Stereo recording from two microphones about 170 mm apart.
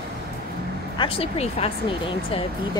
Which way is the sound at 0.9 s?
35° left (ahead or behind).